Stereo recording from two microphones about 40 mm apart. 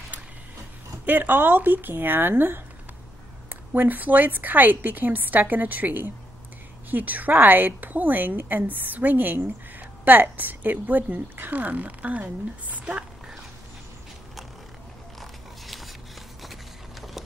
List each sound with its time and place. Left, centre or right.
1.0 s a woman's voice: right
15.1 s biting: centre